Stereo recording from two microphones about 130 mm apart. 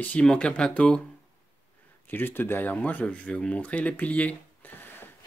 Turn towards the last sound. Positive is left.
turn(degrees=15)  # may be behind; listen again after turning